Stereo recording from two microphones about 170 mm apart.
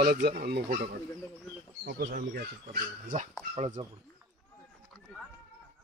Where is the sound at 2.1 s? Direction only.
65° right (ahead or behind).